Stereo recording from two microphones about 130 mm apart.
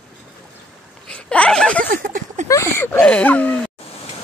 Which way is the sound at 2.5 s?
20° left (ahead or behind).